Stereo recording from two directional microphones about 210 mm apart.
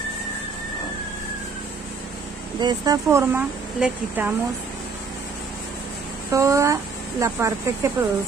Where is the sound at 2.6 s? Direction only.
20° right (ahead or behind).